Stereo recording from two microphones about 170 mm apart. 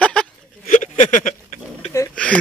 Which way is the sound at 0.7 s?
45° left (ahead or behind).